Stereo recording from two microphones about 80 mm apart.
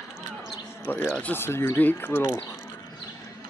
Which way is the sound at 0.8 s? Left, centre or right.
Left.